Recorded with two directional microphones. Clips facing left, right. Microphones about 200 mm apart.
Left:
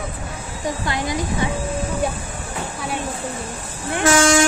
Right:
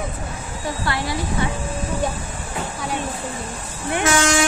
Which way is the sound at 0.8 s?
20° left (ahead or behind).